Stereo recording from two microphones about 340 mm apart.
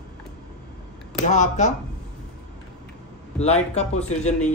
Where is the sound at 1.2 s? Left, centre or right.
Left.